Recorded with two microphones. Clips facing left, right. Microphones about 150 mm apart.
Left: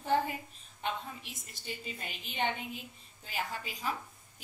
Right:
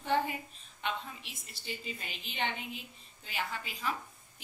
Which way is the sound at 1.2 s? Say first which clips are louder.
Left 1 dB; 45° left (ahead or behind).